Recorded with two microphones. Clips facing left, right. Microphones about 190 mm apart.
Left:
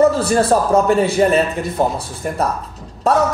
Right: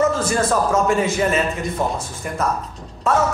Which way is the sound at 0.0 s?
35° left (ahead or behind).